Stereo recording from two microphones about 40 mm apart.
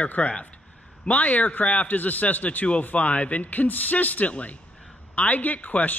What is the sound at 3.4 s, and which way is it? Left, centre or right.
Speech, left.